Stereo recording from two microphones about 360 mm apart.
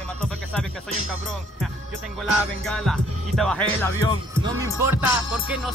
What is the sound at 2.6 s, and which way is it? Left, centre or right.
Music, centre.